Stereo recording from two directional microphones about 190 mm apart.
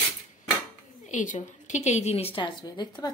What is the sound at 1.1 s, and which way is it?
Speech, 40° left (ahead or behind).